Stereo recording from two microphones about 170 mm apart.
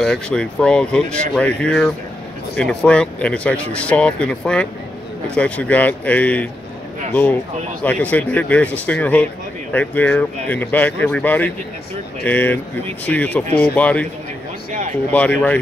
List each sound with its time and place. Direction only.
0.0 s a man's voice: 5° left (ahead or behind)
7.8 s a man's voice: 10° left (ahead or behind)
14.7 s a sound: 45° right (ahead or behind)
15.1 s a man's voice: 10° left (ahead or behind)